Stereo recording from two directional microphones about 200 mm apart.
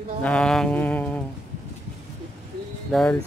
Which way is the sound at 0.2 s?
5° left (ahead or behind).